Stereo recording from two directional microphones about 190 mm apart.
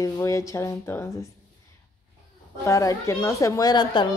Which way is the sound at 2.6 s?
15° left (ahead or behind).